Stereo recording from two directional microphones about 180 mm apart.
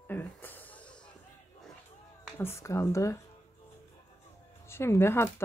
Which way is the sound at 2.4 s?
15° left (ahead or behind).